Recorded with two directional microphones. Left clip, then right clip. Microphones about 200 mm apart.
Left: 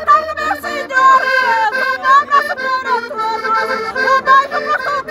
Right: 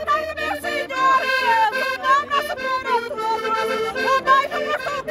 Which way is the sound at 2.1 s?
5° right (ahead or behind).